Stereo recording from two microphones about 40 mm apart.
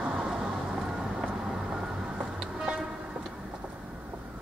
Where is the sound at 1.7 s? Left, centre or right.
Right.